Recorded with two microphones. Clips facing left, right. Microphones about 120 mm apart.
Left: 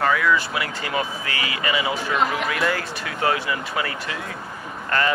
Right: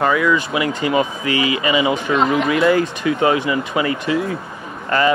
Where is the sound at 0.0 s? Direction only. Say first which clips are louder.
Right 4 dB; 15° right (ahead or behind).